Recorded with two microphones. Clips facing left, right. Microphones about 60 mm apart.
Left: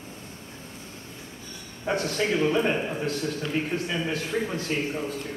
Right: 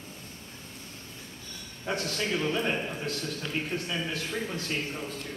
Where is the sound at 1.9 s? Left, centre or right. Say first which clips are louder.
Left 5 dB; left.